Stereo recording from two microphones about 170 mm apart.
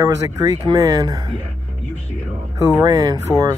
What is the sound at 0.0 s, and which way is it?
Speech, 20° right (ahead or behind).